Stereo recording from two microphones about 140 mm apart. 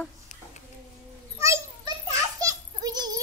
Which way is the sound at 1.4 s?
20° right (ahead or behind).